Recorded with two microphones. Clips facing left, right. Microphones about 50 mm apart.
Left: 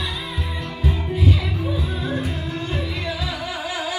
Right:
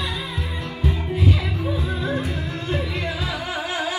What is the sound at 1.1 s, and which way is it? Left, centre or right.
Music, right.